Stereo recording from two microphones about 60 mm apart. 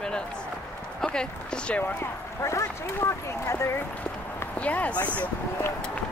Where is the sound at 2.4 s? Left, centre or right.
Left.